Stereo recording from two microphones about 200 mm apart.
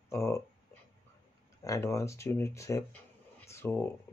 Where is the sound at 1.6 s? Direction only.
15° left (ahead or behind).